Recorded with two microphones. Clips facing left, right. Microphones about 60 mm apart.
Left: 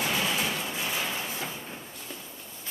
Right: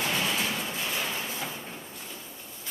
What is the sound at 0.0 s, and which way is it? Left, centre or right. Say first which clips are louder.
Train: even; centre.